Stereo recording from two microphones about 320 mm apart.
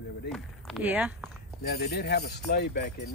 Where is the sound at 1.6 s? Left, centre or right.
Left.